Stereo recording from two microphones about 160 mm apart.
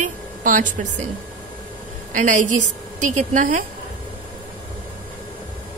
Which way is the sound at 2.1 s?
50° right (ahead or behind).